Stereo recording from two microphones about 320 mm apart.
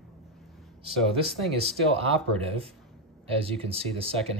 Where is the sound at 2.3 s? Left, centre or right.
Centre.